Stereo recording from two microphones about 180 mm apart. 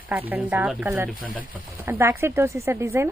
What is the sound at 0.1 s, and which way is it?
Speech, 10° right (ahead or behind).